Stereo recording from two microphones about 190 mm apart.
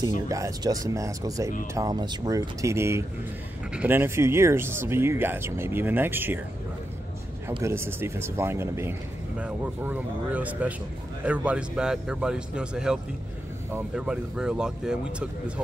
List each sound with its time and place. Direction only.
0.3 s speech: 20° right (ahead or behind)
7.6 s speech: 15° right (ahead or behind)